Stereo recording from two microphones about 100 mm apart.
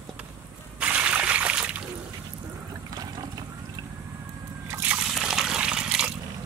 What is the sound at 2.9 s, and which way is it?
Water, 35° right (ahead or behind).